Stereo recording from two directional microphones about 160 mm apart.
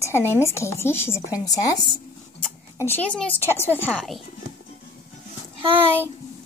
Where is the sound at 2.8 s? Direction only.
10° left (ahead or behind).